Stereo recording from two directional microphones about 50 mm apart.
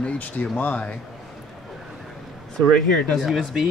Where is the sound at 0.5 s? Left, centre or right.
Left.